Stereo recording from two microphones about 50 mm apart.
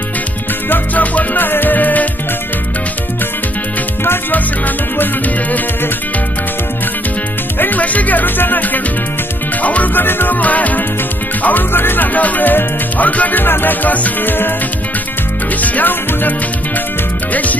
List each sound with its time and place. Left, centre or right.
0.7 s music: left
4.9 s music: left
7.5 s music: left
10.0 s music: left
15.6 s music: left
17.3 s music: left